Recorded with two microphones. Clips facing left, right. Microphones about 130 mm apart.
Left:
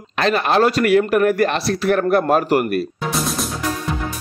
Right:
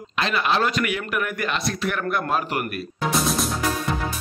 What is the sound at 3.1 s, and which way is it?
Music, centre (ahead or behind).